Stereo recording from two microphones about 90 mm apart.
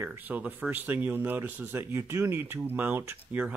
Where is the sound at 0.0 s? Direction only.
20° right (ahead or behind).